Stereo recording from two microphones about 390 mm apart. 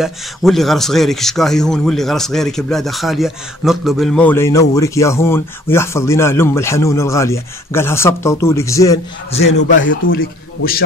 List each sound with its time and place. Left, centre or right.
0.0 s speech: centre
9.6 s a man's voice: left